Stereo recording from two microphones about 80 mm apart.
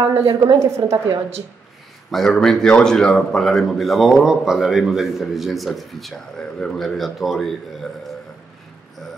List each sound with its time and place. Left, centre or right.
0.1 s a woman's voice: right
2.0 s a man's voice: centre